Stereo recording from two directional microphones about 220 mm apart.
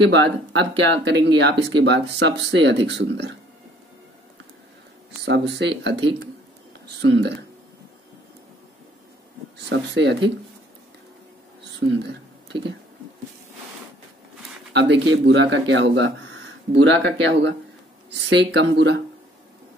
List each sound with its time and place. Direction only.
0.0 s speech: 55° right (ahead or behind)
5.2 s speech: 50° right (ahead or behind)
9.7 s speech: 55° right (ahead or behind)
14.7 s speech: 50° right (ahead or behind)